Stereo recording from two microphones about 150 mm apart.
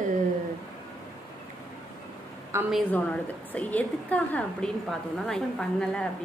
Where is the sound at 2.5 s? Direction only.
20° right (ahead or behind).